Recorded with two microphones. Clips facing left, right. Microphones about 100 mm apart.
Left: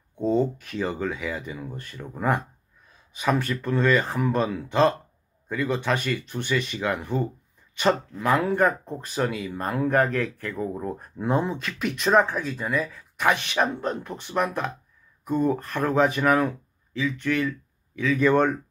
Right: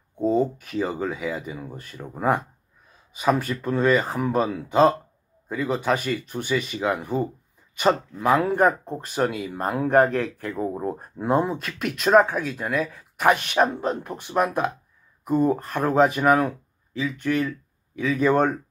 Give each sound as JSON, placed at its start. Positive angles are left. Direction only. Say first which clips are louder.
{"t": 0.2, "sound": "speech", "louder": "right 1 dB", "side_deg": -5}
{"t": 8.5, "sound": "speech", "louder": "right 2 dB", "side_deg": -15}